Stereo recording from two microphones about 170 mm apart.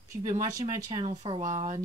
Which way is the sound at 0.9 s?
35° right (ahead or behind).